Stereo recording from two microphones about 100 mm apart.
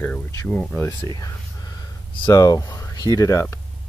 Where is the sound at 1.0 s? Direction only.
40° left (ahead or behind).